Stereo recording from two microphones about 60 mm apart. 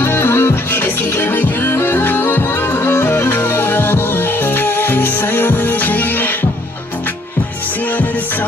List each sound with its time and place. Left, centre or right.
0.0 s music: left